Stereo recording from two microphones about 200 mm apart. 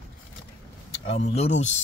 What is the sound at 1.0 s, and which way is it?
Speech, 30° left (ahead or behind).